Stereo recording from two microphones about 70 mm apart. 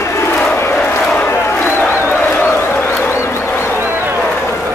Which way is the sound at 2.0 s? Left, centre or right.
Left.